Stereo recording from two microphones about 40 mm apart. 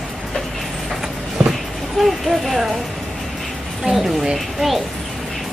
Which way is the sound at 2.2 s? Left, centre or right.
Centre.